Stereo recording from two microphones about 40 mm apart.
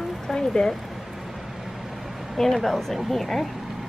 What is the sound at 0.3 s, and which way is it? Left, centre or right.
Speech, centre.